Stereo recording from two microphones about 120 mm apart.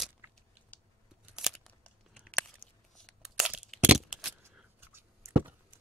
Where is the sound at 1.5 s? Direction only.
5° left (ahead or behind).